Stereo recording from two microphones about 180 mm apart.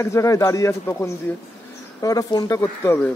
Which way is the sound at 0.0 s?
15° left (ahead or behind).